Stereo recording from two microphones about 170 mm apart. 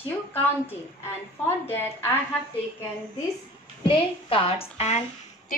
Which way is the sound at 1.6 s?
10° left (ahead or behind).